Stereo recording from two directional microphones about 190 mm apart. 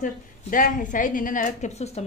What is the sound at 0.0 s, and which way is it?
A woman's voice, 45° left (ahead or behind).